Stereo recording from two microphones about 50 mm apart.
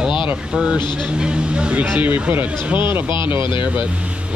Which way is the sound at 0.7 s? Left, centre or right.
Centre.